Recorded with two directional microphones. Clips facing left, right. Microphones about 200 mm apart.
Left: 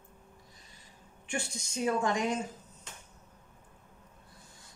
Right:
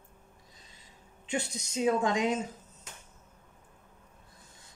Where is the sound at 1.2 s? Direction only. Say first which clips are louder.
Right 3 dB; 20° right (ahead or behind).